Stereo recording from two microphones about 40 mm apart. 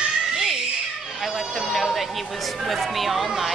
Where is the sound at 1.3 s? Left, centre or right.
Centre.